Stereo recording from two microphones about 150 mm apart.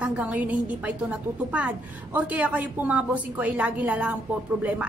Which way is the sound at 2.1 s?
10° right (ahead or behind).